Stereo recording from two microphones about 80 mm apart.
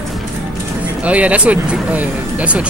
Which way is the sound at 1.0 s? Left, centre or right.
Centre.